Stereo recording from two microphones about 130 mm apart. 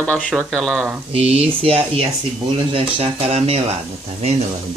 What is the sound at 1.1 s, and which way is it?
Speech, 50° right (ahead or behind).